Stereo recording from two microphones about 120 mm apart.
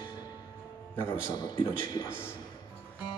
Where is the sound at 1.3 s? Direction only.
35° left (ahead or behind).